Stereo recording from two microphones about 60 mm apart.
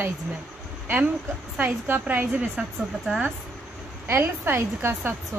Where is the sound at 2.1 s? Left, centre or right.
Right.